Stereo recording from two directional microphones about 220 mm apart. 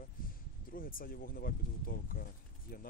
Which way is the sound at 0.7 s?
40° left (ahead or behind).